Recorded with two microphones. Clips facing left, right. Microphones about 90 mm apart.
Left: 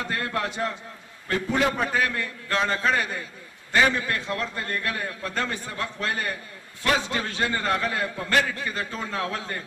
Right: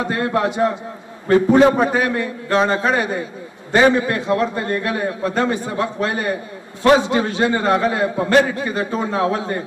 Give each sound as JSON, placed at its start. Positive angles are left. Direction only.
{"t": 0.0, "sound": "a man's voice", "side_deg": -20}